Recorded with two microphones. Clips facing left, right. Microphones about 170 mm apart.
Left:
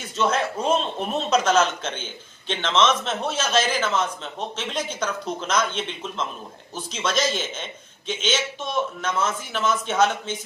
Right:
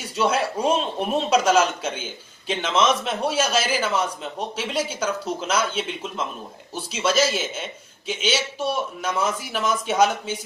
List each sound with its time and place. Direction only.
0.0 s a man's voice: 10° right (ahead or behind)